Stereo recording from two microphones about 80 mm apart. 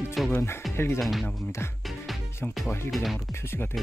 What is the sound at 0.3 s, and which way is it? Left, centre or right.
Speech, left.